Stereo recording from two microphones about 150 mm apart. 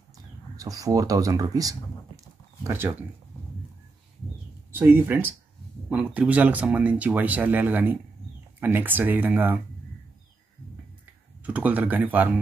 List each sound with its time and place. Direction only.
0.6 s speech: 25° right (ahead or behind)
4.7 s speech: 15° right (ahead or behind)
11.4 s speech: 10° right (ahead or behind)